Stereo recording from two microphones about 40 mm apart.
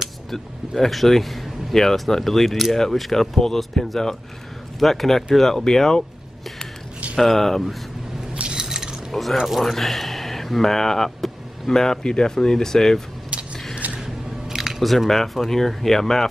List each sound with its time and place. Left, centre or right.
0.3 s speech: centre
7.2 s speech: centre
8.4 s a sound: right
8.6 s cutlery: centre
9.1 s speech: centre
13.9 s biting: centre
14.8 s speech: centre